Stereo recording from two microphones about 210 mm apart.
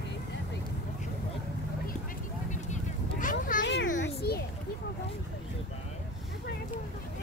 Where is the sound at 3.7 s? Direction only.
55° left (ahead or behind).